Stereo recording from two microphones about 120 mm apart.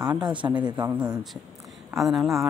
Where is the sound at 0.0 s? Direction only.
35° right (ahead or behind).